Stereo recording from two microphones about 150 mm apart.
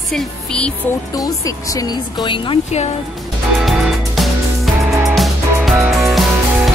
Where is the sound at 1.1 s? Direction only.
25° left (ahead or behind).